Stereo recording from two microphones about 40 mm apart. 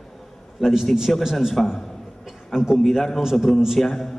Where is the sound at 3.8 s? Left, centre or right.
Centre.